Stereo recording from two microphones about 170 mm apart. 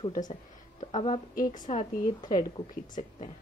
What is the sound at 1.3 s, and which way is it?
Speech, 50° left (ahead or behind).